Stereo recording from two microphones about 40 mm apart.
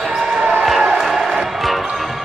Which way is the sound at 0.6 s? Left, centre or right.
Centre.